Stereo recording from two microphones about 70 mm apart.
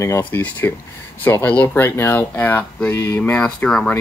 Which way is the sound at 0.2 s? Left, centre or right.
Left.